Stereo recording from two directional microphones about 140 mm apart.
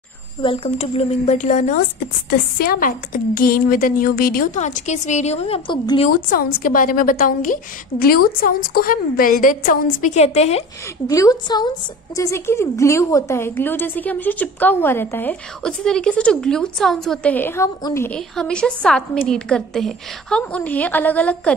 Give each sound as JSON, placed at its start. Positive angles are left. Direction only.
{"t": 0.4, "sound": "a woman's voice", "side_deg": 40}
{"t": 2.6, "sound": "a woman's voice", "side_deg": 85}
{"t": 6.0, "sound": "a woman's voice", "side_deg": 85}
{"t": 10.1, "sound": "a woman's voice", "side_deg": 50}
{"t": 11.1, "sound": "a woman's voice", "side_deg": 25}
{"t": 12.2, "sound": "a woman's voice", "side_deg": 20}
{"t": 18.1, "sound": "a woman's voice", "side_deg": 5}